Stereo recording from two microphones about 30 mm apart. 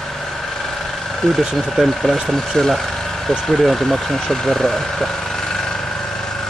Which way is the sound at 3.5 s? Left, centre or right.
Centre.